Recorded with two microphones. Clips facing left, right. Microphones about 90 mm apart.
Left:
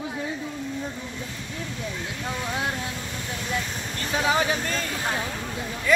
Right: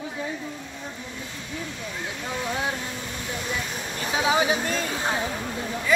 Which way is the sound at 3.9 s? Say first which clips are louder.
Right 1 dB; 10° right (ahead or behind).